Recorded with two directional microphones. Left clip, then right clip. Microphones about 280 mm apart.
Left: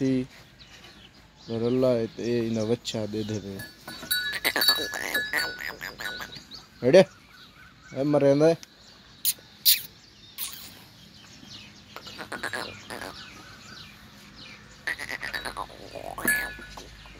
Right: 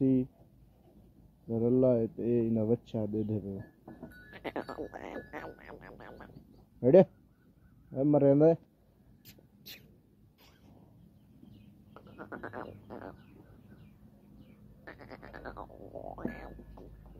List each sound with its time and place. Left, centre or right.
0.0 s speech: centre
1.5 s speech: centre
1.8 s speech: centre
3.3 s speech: left
4.3 s goat: centre
4.6 s music: centre
5.0 s music: centre
6.8 s speech: centre
12.2 s music: centre
14.9 s frog: centre
15.3 s cricket: centre
15.6 s a sound: left
16.2 s a sound: centre